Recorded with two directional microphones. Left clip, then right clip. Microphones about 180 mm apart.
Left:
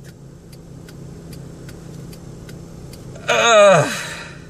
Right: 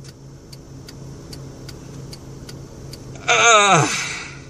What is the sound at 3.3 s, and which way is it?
Speech, 30° right (ahead or behind).